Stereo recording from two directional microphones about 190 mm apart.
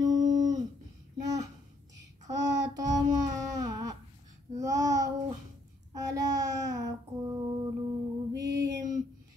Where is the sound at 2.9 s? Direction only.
20° right (ahead or behind).